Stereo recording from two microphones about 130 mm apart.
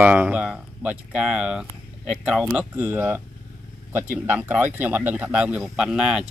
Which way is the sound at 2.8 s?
15° right (ahead or behind).